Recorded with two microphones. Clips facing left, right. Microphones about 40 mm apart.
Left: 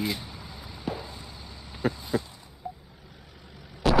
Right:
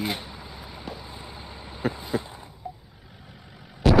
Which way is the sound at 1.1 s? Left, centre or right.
Right.